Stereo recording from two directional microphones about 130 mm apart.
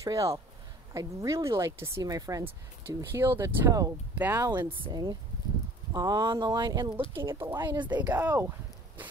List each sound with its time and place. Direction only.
0.0 s speech: 25° right (ahead or behind)
4.6 s speech: 35° right (ahead or behind)
7.2 s speech: 20° right (ahead or behind)
7.5 s speech: 35° right (ahead or behind)
8.0 s speech: 15° right (ahead or behind)